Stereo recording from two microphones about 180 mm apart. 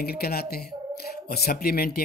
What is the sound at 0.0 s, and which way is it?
Speech, 60° left (ahead or behind).